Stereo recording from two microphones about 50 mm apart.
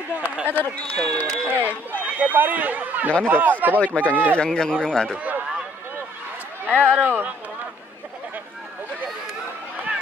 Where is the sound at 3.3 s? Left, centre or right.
Right.